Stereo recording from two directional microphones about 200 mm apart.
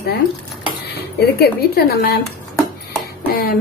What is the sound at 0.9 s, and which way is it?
Speech, 55° left (ahead or behind).